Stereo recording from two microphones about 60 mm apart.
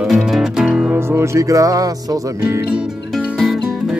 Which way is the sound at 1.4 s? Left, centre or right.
Right.